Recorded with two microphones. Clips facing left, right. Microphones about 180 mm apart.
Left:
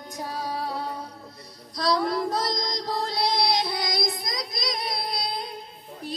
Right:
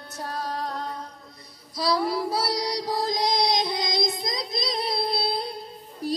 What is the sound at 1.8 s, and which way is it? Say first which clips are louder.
Child singing: even; 5° right (ahead or behind).